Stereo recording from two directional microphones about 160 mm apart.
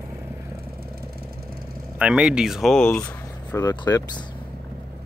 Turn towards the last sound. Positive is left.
turn(degrees=25)  # may be behind; listen again after turning